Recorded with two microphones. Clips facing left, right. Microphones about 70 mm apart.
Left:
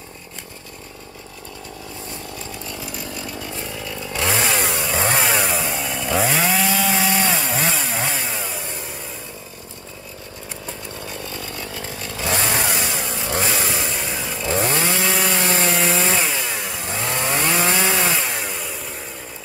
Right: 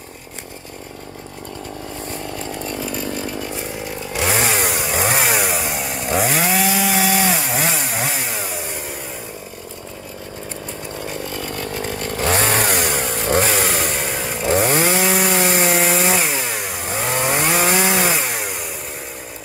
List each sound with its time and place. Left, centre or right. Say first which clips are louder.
2.3 s chainsaw: right 6 dB; right
3.4 s chainsaw: right 3 dB; right
11.1 s chainsaw: right 5 dB; right
11.4 s chainsaw: right 6 dB; right
14.0 s chainsaw: right 3 dB; right
14.3 s chainsaw: right 4 dB; right
14.9 s wood: right 3 dB; centre
15.7 s wood: right 3 dB; right
16.0 s chainsaw: right 2 dB; centre